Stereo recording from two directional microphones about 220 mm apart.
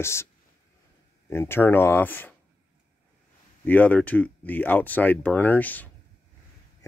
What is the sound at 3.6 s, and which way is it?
Speech, 5° left (ahead or behind).